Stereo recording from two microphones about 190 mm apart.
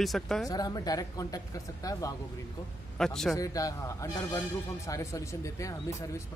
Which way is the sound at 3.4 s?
20° left (ahead or behind).